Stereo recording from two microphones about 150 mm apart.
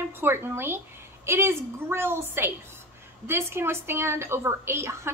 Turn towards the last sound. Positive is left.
turn(degrees=-15)  # may be behind; listen again after turning